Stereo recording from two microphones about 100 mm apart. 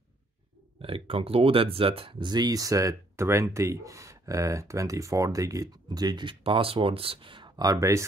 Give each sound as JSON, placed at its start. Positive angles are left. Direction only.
{"t": 0.7, "sound": "speech", "side_deg": -65}